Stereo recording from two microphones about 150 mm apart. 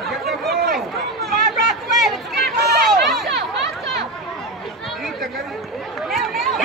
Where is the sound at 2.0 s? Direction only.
Centre (ahead or behind).